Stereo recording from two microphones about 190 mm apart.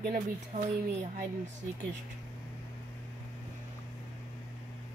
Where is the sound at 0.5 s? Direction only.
30° right (ahead or behind).